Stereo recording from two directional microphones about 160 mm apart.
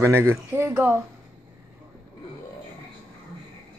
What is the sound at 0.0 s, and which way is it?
Speech, 15° right (ahead or behind).